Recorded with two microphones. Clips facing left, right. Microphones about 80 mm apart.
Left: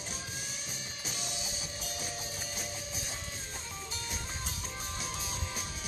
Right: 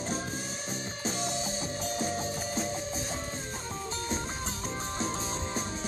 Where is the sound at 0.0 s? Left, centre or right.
Right.